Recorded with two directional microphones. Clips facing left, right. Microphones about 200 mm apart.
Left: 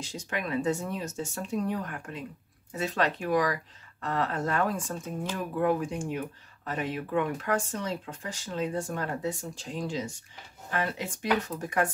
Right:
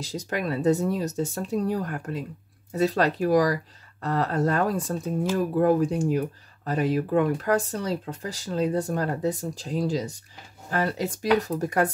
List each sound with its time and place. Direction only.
0.0 s speech: 40° right (ahead or behind)